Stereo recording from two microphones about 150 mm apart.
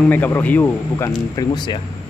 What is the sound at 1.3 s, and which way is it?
Speech, 30° left (ahead or behind).